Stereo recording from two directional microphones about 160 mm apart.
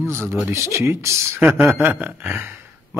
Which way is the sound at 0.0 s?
15° right (ahead or behind).